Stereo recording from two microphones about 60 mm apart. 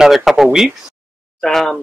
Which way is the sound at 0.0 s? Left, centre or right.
Centre.